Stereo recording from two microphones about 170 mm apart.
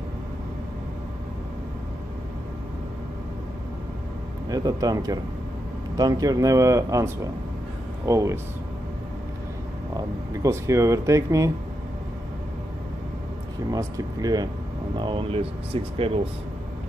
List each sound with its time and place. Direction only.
4.5 s speech: 20° right (ahead or behind)
9.9 s speech: 20° right (ahead or behind)
13.7 s speech: 20° right (ahead or behind)